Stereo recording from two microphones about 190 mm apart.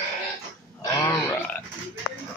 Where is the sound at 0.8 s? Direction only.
15° left (ahead or behind).